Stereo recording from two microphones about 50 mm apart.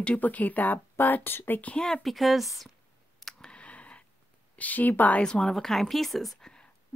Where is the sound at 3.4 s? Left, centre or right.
Left.